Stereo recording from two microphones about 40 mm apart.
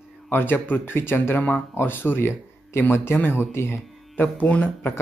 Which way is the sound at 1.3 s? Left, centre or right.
Left.